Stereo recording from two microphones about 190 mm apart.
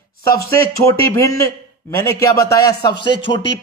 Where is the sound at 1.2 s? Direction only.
15° left (ahead or behind).